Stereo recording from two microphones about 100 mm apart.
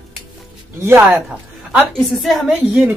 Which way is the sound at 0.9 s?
25° right (ahead or behind).